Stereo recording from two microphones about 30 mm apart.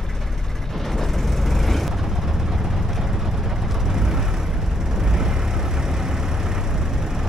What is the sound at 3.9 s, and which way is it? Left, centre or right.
Vehicle, centre.